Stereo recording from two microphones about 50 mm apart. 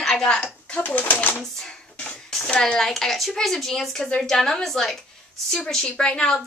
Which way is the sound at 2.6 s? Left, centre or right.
Centre.